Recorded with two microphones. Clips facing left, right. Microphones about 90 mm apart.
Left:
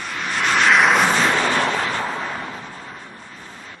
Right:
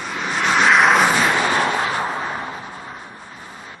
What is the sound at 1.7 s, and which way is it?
Vehicle, 25° right (ahead or behind).